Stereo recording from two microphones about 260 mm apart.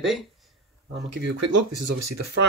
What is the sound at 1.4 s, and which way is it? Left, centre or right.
Speech, right.